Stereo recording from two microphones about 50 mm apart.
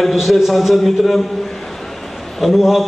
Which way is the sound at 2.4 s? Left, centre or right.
Centre.